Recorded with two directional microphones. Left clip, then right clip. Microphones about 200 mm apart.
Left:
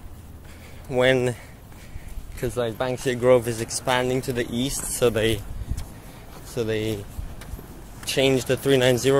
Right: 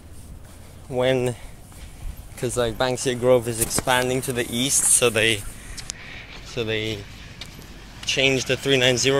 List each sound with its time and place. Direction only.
0.9 s speech: 5° left (ahead or behind)
2.4 s speech: 20° right (ahead or behind)
3.1 s speech: centre (ahead or behind)
6.5 s speech: 20° left (ahead or behind)
8.0 s speech: 20° left (ahead or behind)